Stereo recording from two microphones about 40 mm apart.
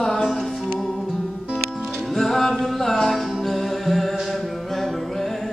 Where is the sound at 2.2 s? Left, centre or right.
Centre.